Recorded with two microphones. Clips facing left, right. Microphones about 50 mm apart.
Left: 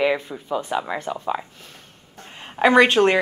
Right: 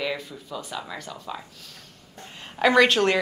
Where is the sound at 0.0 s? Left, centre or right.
Left.